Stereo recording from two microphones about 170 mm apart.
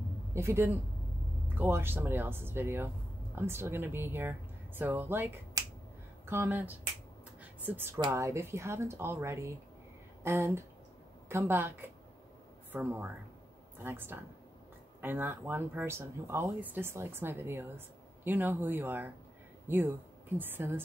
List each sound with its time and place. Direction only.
0.3 s speech: 15° right (ahead or behind)